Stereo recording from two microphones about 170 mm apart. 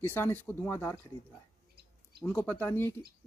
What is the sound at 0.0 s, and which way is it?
Speech, 15° left (ahead or behind).